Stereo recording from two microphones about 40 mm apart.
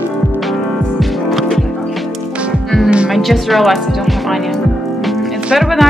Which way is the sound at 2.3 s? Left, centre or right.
Right.